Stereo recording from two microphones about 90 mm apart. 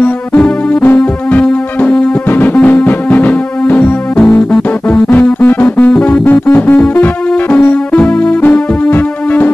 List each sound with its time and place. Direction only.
0.8 s music: 15° left (ahead or behind)
5.2 s music: 20° left (ahead or behind)
7.5 s music: 15° left (ahead or behind)